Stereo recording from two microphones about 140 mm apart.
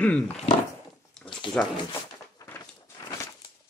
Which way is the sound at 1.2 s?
5° left (ahead or behind).